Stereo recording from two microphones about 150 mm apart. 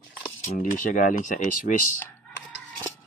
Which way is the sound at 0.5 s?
65° left (ahead or behind).